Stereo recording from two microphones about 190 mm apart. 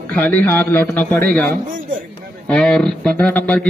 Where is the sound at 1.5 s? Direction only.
45° right (ahead or behind).